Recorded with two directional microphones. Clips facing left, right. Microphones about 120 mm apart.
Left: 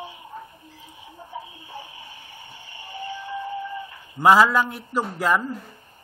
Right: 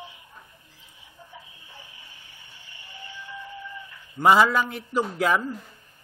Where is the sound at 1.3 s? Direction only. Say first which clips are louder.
Left 13 dB; 20° left (ahead or behind).